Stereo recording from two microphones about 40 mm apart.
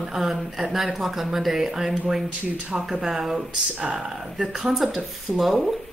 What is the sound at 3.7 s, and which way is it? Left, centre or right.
Speech, right.